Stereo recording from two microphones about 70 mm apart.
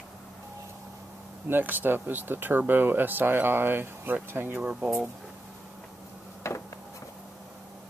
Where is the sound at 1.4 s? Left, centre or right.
Right.